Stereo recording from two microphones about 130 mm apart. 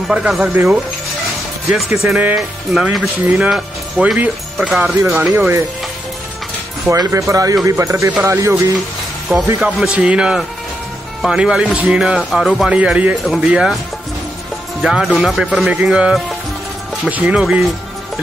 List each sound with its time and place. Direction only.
0.1 s speech: 5° right (ahead or behind)
1.7 s speech: 10° right (ahead or behind)
6.9 s speech: 25° right (ahead or behind)
9.6 s speech: 5° right (ahead or behind)
14.8 s speech: 5° right (ahead or behind)